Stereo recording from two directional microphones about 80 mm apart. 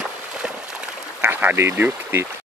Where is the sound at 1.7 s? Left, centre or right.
Right.